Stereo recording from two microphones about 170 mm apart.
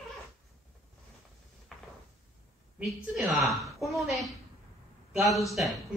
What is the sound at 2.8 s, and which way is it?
A woman's voice, centre (ahead or behind).